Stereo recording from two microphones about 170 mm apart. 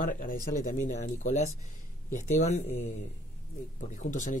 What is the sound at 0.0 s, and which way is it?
Speech, 55° left (ahead or behind).